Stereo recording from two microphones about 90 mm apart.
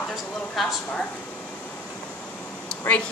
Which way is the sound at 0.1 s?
5° right (ahead or behind).